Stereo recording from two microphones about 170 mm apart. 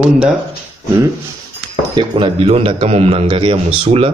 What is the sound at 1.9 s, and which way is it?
A man's voice, 30° right (ahead or behind).